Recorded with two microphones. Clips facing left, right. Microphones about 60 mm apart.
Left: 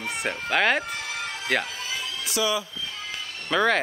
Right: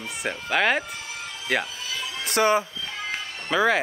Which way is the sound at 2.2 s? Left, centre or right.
Right.